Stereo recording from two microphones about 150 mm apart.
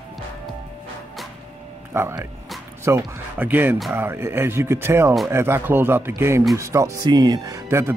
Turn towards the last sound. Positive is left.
turn(degrees=-15)  # may be behind; listen again after turning